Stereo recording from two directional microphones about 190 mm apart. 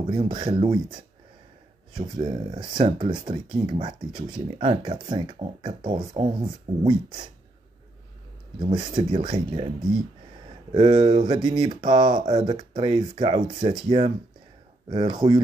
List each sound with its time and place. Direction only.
0.1 s speech: 25° right (ahead or behind)
2.0 s speech: 30° right (ahead or behind)
8.6 s speech: 25° right (ahead or behind)
10.7 s speech: 35° right (ahead or behind)